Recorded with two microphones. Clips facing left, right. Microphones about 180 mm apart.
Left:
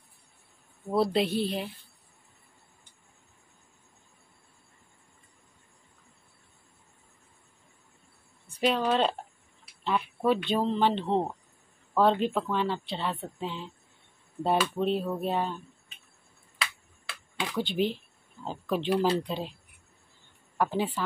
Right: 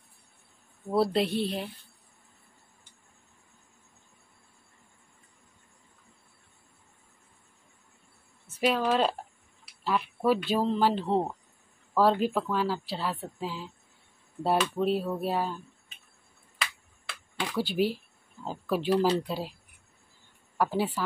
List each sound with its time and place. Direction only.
0.8 s speech: centre (ahead or behind)
8.5 s a woman's voice: 5° right (ahead or behind)
17.4 s speech: 5° right (ahead or behind)
20.5 s a woman's voice: 5° right (ahead or behind)